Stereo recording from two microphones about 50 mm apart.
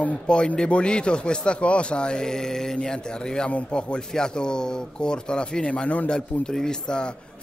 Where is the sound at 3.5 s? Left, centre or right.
Left.